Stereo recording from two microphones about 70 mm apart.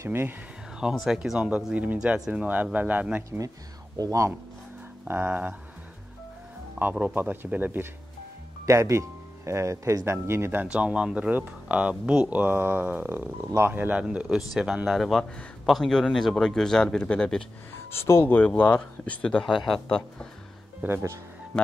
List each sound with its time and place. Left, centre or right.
0.0 s speech: right
1.0 s speech: centre
1.7 s speech: right
2.1 s speech: centre
2.4 s speech: right
3.3 s speech: right
5.0 s speech: right
6.8 s speech: right
8.6 s speech: right
10.6 s speech: centre
14.0 s speech: centre
17.9 s speech: left
18.5 s speech: centre
19.4 s speech: centre